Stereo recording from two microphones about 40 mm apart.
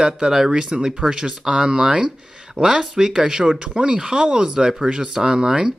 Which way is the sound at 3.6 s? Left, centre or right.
Right.